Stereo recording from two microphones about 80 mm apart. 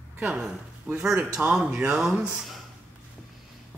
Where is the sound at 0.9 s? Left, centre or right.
Centre.